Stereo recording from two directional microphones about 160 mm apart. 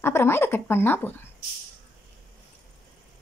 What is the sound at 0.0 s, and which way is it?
A woman's voice, 15° left (ahead or behind).